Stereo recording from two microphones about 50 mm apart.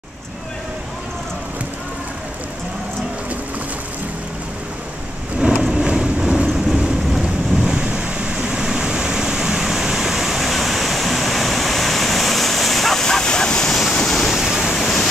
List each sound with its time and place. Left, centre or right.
5.4 s vehicle: centre
6.7 s thunder: centre
14.3 s waves: centre
14.8 s waves: centre